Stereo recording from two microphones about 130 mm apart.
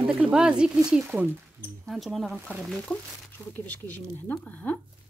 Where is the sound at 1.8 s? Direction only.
Centre (ahead or behind).